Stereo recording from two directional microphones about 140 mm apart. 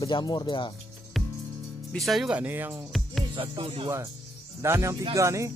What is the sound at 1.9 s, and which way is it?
Speech, centre (ahead or behind).